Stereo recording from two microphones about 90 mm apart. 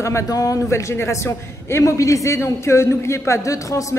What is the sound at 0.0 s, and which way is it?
A man's voice, 35° left (ahead or behind).